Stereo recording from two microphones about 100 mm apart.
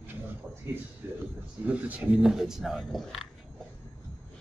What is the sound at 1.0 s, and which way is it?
A man's voice, 25° right (ahead or behind).